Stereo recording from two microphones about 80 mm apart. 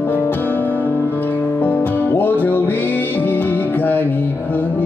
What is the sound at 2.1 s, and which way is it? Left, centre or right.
Music, left.